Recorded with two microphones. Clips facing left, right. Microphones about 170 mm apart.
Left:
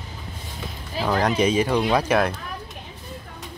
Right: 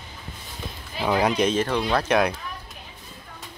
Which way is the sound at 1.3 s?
5° left (ahead or behind).